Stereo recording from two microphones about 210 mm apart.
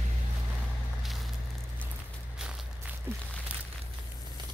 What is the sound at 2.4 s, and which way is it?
Walk, 5° right (ahead or behind).